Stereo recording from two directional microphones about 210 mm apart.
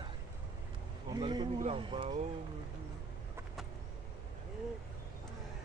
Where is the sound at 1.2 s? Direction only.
20° right (ahead or behind).